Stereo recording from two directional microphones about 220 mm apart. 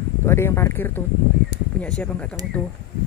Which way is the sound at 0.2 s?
10° left (ahead or behind).